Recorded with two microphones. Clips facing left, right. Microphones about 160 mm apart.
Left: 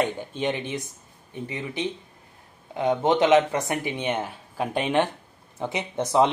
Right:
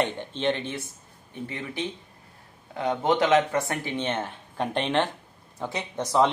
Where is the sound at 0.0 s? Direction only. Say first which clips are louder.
Even; 10° left (ahead or behind).